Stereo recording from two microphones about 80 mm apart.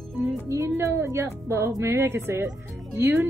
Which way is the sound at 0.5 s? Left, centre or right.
Right.